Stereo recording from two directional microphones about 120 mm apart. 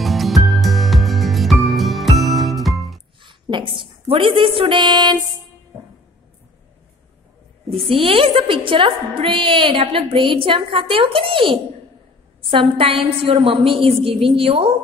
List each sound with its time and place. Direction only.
0.0 s music: centre (ahead or behind)
3.2 s a woman's voice: 40° right (ahead or behind)
7.7 s a woman's voice: 50° right (ahead or behind)